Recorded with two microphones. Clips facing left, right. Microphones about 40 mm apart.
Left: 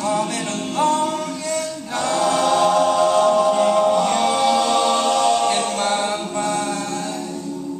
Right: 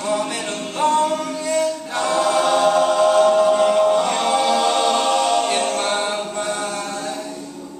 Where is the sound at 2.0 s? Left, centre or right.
Centre.